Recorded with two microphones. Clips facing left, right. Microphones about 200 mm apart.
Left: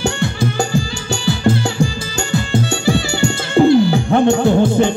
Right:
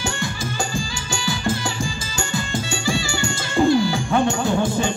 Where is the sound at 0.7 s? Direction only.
65° left (ahead or behind).